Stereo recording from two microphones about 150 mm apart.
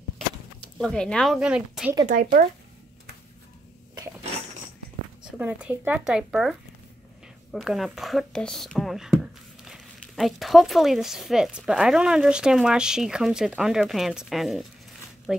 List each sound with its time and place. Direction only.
0.7 s speech: 5° left (ahead or behind)
2.0 s speech: 70° right (ahead or behind)
5.2 s speech: 10° right (ahead or behind)
7.5 s speech: centre (ahead or behind)